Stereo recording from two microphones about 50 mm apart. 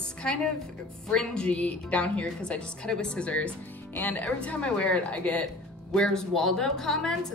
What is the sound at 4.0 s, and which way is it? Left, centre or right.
A woman's voice, left.